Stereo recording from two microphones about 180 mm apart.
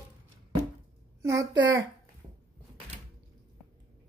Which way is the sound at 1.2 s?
15° right (ahead or behind).